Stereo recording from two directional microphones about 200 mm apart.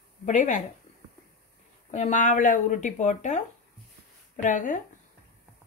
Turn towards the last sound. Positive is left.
turn(degrees=40)  # may be behind; listen again after turning